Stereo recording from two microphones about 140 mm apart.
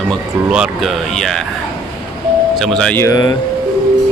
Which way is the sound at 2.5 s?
Centre (ahead or behind).